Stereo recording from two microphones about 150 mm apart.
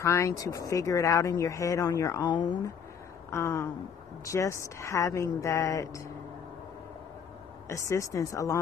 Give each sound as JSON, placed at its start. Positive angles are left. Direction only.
{"t": 0.0, "sound": "speech", "side_deg": 20}
{"t": 3.3, "sound": "a sound", "side_deg": 15}
{"t": 4.2, "sound": "speech", "side_deg": 20}
{"t": 7.6, "sound": "speech", "side_deg": 20}